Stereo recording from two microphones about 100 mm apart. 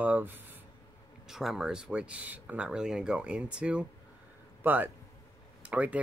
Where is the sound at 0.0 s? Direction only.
15° right (ahead or behind).